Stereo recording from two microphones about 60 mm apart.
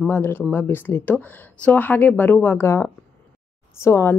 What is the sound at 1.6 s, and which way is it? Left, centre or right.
A woman's voice, left.